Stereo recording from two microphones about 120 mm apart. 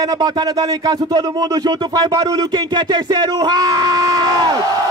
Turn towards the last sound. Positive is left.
turn(degrees=-30)  # may be behind; listen again after turning